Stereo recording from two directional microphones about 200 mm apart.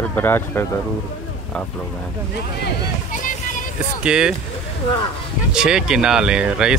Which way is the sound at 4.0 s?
5° right (ahead or behind).